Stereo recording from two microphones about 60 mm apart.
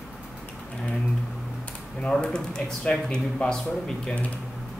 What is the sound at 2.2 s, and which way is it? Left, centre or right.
Speech, centre.